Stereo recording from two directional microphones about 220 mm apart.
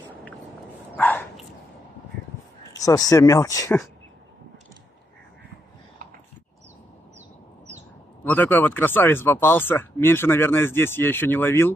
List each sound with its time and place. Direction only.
0.9 s dog: 10° left (ahead or behind)
2.7 s a sound: 15° left (ahead or behind)
3.1 s speech: 15° left (ahead or behind)
8.3 s speech: 10° left (ahead or behind)